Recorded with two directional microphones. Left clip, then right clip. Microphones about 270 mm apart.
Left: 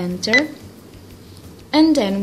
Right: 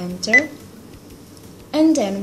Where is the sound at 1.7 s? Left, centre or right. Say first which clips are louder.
Left 2 dB; left.